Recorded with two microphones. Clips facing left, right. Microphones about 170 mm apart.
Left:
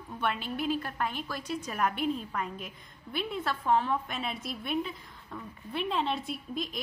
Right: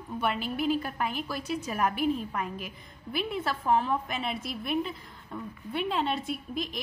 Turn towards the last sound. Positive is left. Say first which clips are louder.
# right 2 dB
turn(degrees=0)  # may be behind; listen again after turning